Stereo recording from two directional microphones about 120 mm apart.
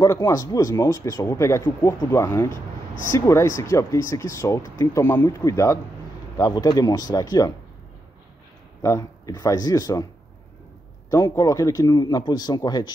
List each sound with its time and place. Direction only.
0.0 s speech: 30° left (ahead or behind)
8.8 s speech: 25° left (ahead or behind)
11.1 s speech: 25° left (ahead or behind)